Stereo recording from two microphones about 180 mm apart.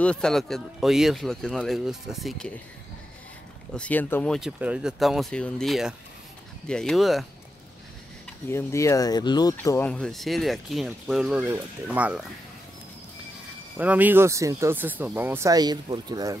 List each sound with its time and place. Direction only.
0.0 s speech: 5° left (ahead or behind)
3.7 s speech: 5° left (ahead or behind)
8.5 s speech: 15° left (ahead or behind)
9.6 s speech: 10° left (ahead or behind); by 12.3 s 5° right (ahead or behind)
13.7 s speech: 10° right (ahead or behind)